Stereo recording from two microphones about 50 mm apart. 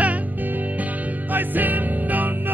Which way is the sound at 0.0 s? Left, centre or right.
Right.